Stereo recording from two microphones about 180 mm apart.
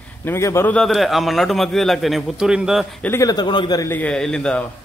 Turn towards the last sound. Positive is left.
turn(degrees=5)  # may be behind; listen again after turning